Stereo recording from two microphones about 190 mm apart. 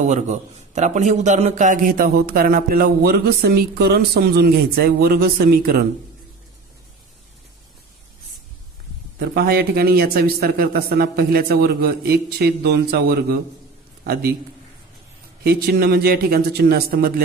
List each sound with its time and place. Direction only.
0.0 s a man's voice: 40° right (ahead or behind)
9.2 s a man's voice: 55° right (ahead or behind)
15.4 s a man's voice: 55° right (ahead or behind)